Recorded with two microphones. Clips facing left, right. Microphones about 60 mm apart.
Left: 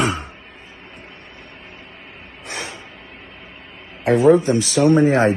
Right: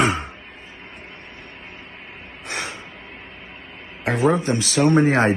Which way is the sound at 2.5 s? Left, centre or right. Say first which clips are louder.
Right 1 dB; right.